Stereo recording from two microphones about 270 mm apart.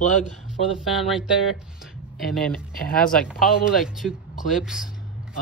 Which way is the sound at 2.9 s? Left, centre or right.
Left.